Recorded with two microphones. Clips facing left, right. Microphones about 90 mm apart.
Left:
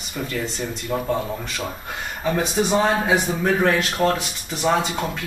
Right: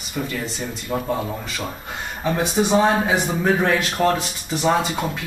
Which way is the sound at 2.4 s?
20° right (ahead or behind).